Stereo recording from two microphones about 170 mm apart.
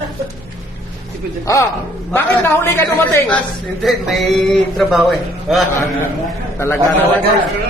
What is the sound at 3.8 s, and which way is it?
A man's voice, centre (ahead or behind).